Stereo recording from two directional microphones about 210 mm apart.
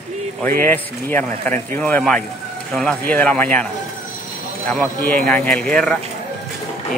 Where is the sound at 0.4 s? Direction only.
10° left (ahead or behind).